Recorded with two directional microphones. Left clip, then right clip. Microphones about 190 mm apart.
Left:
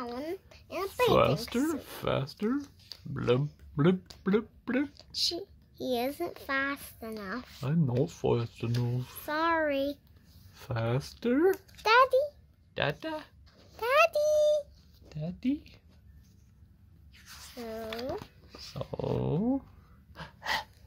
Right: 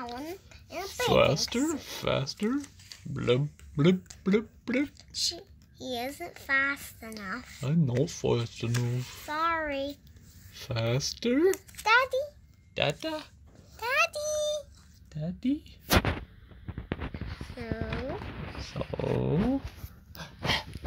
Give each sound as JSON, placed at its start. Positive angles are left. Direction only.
{"t": 0.0, "sound": "a sound", "side_deg": 60}
{"t": 1.1, "sound": "speech", "side_deg": 0}
{"t": 4.9, "sound": "speech", "side_deg": 45}
{"t": 7.6, "sound": "speech", "side_deg": -5}
{"t": 9.3, "sound": "a child's voice", "side_deg": 50}
{"t": 10.5, "sound": "speech", "side_deg": 0}
{"t": 11.8, "sound": "a child's voice", "side_deg": 50}
{"t": 12.7, "sound": "speech", "side_deg": -5}
{"t": 13.7, "sound": "a sound", "side_deg": 30}
{"t": 15.0, "sound": "speech", "side_deg": -5}
{"t": 17.6, "sound": "speech", "side_deg": 25}
{"t": 18.6, "sound": "speech", "side_deg": 0}
{"t": 20.2, "sound": "dog", "side_deg": 0}